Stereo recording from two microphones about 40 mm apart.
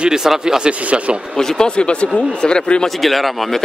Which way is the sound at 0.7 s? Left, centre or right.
Right.